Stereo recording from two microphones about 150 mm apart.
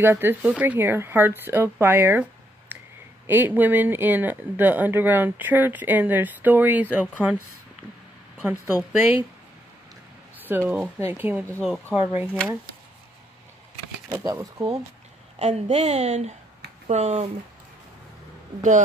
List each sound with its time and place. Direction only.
0.0 s speech: 15° right (ahead or behind)
2.7 s a sound: 10° right (ahead or behind)
3.3 s speech: 15° right (ahead or behind)
8.4 s speech: 10° right (ahead or behind)
10.3 s a sound: 10° right (ahead or behind)
10.7 s speech: 15° right (ahead or behind)
14.2 s speech: 20° right (ahead or behind)
15.3 s a woman's voice: 45° right (ahead or behind)
18.6 s speech: 55° right (ahead or behind)